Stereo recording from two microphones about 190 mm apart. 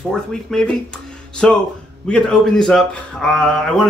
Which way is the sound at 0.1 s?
5° left (ahead or behind).